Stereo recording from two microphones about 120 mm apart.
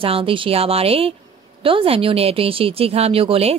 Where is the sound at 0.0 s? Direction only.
50° right (ahead or behind).